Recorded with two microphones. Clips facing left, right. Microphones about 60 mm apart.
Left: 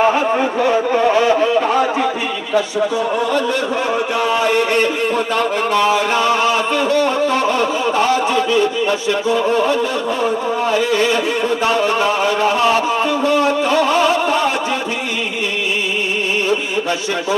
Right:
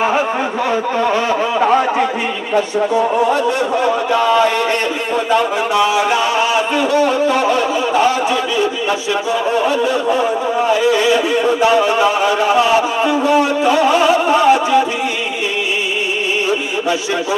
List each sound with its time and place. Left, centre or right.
6.4 s speech: right
11.6 s speech: right